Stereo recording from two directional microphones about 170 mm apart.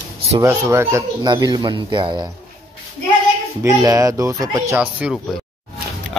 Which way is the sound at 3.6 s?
20° right (ahead or behind).